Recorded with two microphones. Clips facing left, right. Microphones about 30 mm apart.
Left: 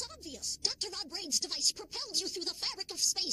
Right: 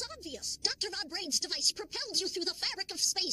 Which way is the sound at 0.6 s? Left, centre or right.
Right.